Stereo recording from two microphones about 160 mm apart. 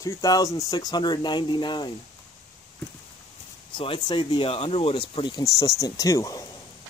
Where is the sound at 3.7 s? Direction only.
35° left (ahead or behind).